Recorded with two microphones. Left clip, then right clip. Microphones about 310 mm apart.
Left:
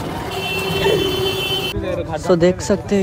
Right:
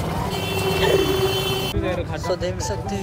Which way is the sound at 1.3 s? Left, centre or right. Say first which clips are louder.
Left 3 dB; right.